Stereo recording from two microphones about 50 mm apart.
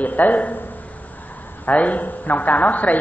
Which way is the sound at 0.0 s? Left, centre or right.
Left.